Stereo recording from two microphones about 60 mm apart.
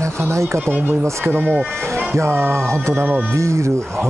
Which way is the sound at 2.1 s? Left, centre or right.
Right.